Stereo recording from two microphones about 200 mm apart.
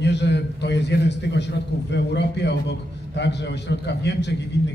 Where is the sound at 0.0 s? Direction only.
60° left (ahead or behind).